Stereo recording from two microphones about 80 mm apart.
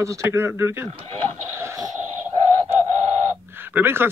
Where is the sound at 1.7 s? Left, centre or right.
Right.